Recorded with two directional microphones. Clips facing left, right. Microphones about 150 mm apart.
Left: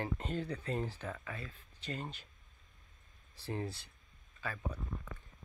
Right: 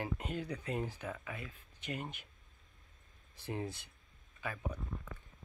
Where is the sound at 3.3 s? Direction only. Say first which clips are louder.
Even; 15° right (ahead or behind).